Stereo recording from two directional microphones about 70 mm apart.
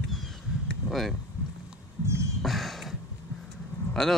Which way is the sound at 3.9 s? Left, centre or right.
Centre.